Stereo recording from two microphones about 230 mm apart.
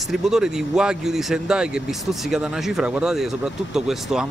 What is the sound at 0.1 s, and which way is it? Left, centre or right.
Speech, centre.